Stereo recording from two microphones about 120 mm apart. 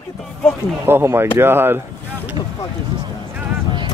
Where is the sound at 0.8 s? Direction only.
20° right (ahead or behind).